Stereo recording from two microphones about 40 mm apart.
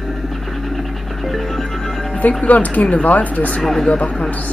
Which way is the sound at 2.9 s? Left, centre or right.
Left.